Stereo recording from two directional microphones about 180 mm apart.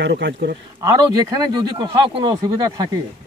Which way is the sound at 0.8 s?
20° right (ahead or behind).